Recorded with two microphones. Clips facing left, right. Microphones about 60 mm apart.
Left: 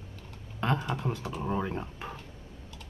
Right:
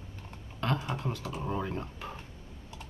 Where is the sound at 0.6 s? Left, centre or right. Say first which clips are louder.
Left 2 dB; left.